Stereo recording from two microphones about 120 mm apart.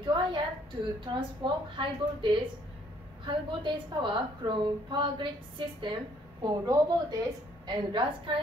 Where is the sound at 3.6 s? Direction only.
45° right (ahead or behind).